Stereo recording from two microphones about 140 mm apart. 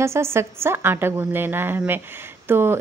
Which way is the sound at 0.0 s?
20° right (ahead or behind).